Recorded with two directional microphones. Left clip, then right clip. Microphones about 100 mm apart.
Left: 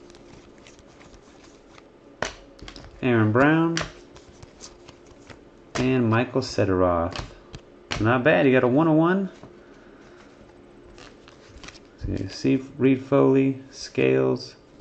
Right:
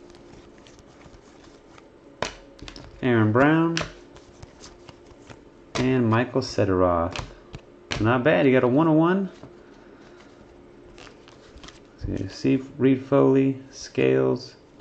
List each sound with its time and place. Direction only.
2.1 s finger snapping: 30° right (ahead or behind)
2.7 s speech: centre (ahead or behind)
5.8 s speech: centre (ahead or behind)
12.3 s speech: centre (ahead or behind)